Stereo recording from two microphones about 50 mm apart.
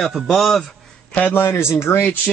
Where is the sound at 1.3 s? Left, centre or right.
Left.